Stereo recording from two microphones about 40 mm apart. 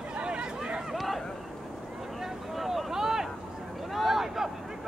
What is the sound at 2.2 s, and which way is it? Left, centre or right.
Vehicle, centre.